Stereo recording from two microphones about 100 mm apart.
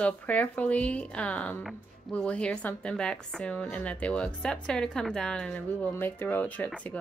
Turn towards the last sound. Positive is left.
turn(degrees=20)  # may be behind; listen again after turning